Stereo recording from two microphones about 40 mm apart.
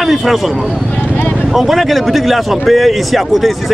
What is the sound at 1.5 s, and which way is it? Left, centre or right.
Speech, centre.